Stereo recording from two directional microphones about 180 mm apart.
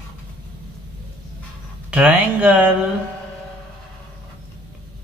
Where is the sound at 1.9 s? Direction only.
10° right (ahead or behind).